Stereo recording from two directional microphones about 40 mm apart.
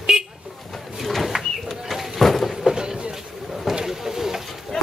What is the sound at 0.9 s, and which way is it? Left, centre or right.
Bird, centre.